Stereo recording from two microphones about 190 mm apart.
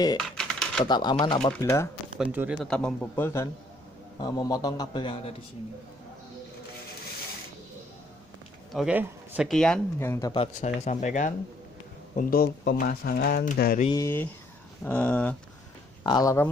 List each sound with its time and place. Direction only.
0.4 s typing: 5° left (ahead or behind)
0.8 s a man's voice: 20° left (ahead or behind)
2.1 s a man's voice: 10° right (ahead or behind); by 5.3 s 30° left (ahead or behind)
8.7 s a man's voice: 5° right (ahead or behind)
9.9 s speech: 15° left (ahead or behind)
10.3 s speech: 35° left (ahead or behind)
12.2 s speech: 50° left (ahead or behind)
13.8 s speech: 15° left (ahead or behind)
16.0 s speech: 20° left (ahead or behind)